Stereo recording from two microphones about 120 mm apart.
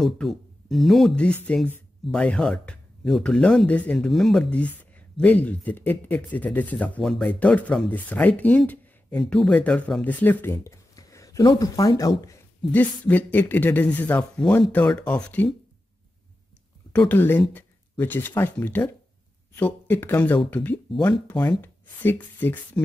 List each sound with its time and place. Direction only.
0.0 s speech: centre (ahead or behind); by 11.9 s 30° left (ahead or behind)
12.7 s speech: 15° left (ahead or behind)
17.0 s speech: 15° left (ahead or behind)